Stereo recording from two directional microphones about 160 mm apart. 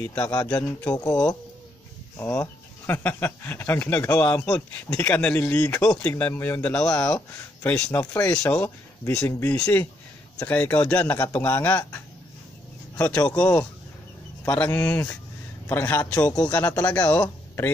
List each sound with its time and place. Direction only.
0.0 s speech: 10° left (ahead or behind)
14.4 s speech: 10° left (ahead or behind)
16.3 s speech: 25° left (ahead or behind)
16.5 s speech: 10° left (ahead or behind)